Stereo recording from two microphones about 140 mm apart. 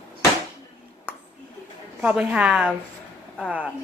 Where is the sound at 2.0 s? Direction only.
10° right (ahead or behind).